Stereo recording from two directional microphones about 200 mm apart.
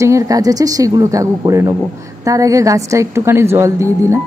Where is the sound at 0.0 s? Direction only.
15° right (ahead or behind).